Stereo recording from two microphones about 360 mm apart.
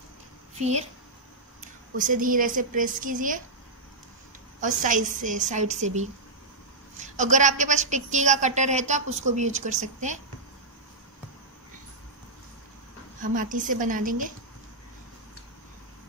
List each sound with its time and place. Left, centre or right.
1.6 s a woman's voice: right
4.6 s a woman's voice: right
13.2 s a woman's voice: right